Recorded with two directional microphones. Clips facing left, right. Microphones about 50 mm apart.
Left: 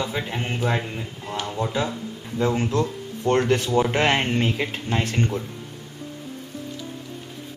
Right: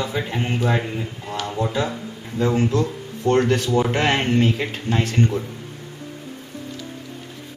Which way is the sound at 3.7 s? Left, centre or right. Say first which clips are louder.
Right 1 dB; centre.